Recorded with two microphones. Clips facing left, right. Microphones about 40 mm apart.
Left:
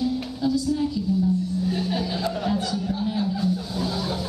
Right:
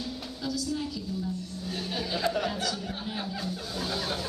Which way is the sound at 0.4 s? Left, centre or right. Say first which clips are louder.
Left 10 dB; centre.